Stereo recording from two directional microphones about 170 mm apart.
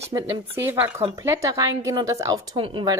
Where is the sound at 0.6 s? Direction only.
10° right (ahead or behind).